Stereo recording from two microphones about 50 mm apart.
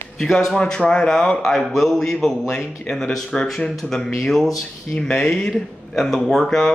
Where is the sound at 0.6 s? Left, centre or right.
Centre.